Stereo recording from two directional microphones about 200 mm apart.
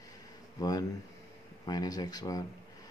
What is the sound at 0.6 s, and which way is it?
Speech, 20° left (ahead or behind).